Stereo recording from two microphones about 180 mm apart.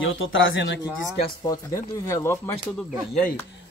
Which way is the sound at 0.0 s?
90° left.